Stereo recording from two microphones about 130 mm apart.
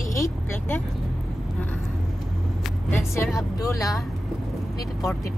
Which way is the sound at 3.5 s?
25° left (ahead or behind).